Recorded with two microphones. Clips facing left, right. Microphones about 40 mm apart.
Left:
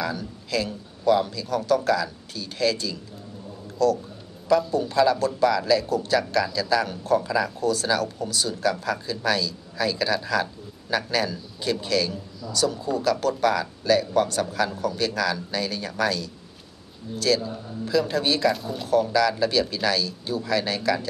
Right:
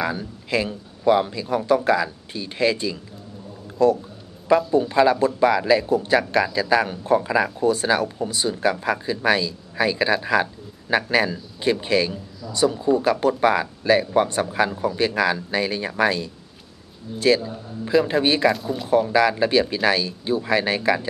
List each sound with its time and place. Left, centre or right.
0.0 s speech: right
17.4 s a man's voice: centre
17.8 s speech: right
18.5 s speech: centre
18.9 s speech: right